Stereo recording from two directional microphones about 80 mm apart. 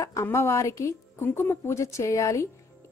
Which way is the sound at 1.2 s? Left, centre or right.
Left.